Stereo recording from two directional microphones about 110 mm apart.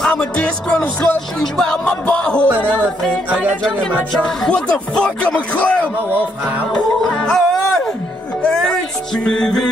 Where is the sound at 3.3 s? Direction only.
Centre (ahead or behind).